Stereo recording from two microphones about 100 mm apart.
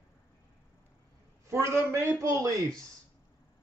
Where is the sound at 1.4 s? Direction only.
30° right (ahead or behind).